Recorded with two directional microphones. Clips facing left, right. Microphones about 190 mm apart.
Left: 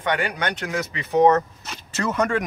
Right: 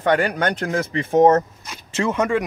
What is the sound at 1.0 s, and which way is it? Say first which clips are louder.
Speech: right 2 dB; 45° right (ahead or behind).